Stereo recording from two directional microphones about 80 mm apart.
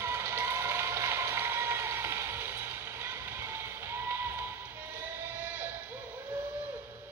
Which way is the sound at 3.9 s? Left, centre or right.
Right.